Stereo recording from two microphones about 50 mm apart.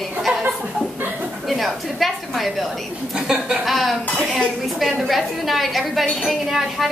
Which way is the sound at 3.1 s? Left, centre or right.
Centre.